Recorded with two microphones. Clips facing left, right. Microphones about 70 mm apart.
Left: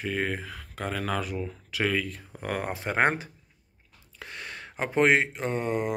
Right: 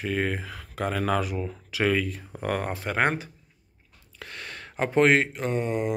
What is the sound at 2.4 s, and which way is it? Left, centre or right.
Speech, centre.